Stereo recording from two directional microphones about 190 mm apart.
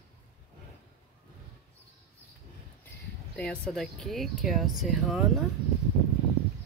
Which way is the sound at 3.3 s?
5° left (ahead or behind).